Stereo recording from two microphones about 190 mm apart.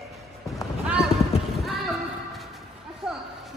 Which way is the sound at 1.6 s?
Centre (ahead or behind).